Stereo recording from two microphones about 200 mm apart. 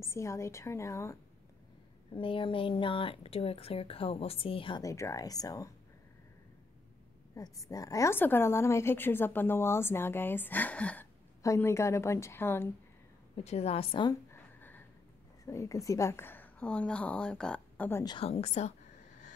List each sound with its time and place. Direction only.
0.0 s a woman's voice: 15° left (ahead or behind)
2.1 s speech: 25° left (ahead or behind)
7.3 s a woman's voice: 15° left (ahead or behind)
13.4 s a woman's voice: 30° left (ahead or behind)
14.3 s a sound: 10° left (ahead or behind)
15.4 s a woman's voice: 15° left (ahead or behind)
18.0 s speech: 25° left (ahead or behind)